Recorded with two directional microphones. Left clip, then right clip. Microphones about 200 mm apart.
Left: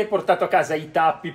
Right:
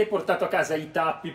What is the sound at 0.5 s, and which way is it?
Speech, 35° left (ahead or behind).